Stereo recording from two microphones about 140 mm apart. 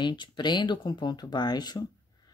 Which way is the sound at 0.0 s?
35° left (ahead or behind).